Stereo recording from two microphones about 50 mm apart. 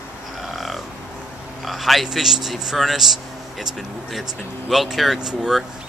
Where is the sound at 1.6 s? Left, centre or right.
Centre.